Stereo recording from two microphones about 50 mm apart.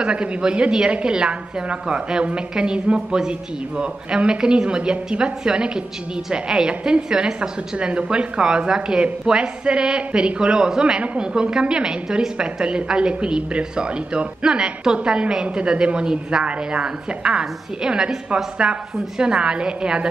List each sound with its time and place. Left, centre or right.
0.0 s a man's voice: right